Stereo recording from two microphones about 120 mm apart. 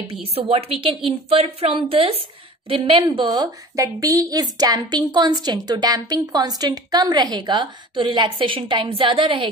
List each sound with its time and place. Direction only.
0.0 s a woman's voice: 50° right (ahead or behind)
3.3 s a woman's voice: 30° right (ahead or behind)